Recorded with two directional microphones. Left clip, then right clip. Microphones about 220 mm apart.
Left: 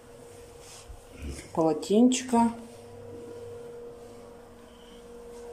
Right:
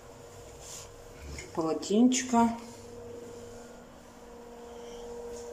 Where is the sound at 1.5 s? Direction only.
10° left (ahead or behind).